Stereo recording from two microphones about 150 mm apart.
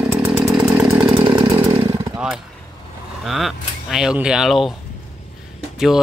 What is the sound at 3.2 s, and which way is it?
Speech, centre (ahead or behind).